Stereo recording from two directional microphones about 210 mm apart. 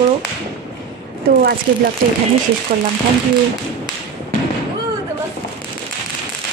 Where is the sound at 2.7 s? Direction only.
40° right (ahead or behind).